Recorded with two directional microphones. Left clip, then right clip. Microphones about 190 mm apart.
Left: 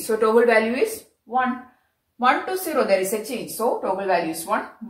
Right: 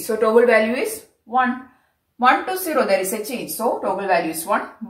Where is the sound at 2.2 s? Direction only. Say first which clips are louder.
Right 3 dB; 5° left (ahead or behind).